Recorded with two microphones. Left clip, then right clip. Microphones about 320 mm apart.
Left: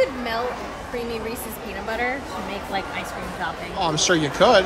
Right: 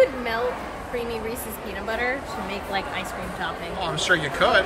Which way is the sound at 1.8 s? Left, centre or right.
Centre.